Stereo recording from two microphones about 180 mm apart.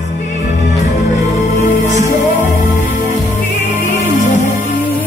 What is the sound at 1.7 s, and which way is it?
Music, 45° left (ahead or behind).